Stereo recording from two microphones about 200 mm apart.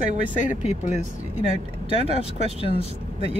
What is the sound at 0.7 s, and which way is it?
Speech, 35° left (ahead or behind).